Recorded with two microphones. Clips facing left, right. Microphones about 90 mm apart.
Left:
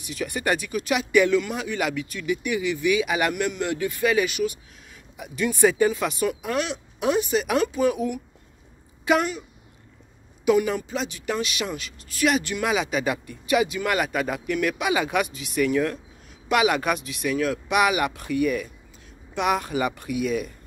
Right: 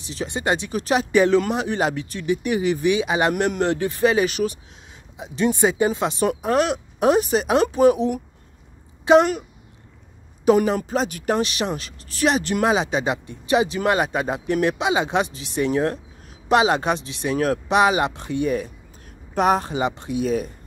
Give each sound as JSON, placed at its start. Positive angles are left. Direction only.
{"t": 0.0, "sound": "speech", "side_deg": -30}
{"t": 6.2, "sound": "a woman's voice", "side_deg": -40}
{"t": 10.4, "sound": "speech", "side_deg": -40}